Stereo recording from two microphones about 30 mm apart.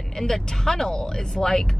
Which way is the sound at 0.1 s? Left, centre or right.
Centre.